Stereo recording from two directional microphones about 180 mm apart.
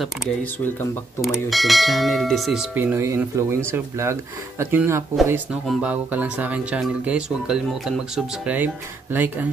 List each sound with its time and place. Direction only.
0.0 s speech: centre (ahead or behind)